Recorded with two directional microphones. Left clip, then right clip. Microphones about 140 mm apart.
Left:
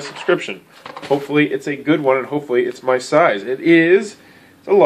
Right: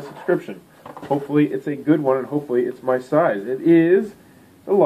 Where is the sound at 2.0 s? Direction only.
25° left (ahead or behind).